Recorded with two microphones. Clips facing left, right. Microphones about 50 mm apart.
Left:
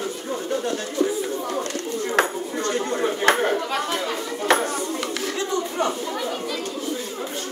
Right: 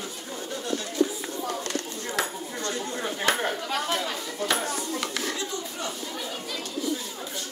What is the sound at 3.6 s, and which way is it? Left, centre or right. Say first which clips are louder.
Speech: left 3 dB; left.